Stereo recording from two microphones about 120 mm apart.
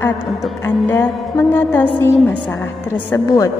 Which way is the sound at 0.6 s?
20° left (ahead or behind).